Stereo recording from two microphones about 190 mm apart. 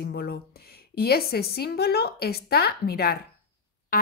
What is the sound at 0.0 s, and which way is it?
A woman's voice, 55° left (ahead or behind).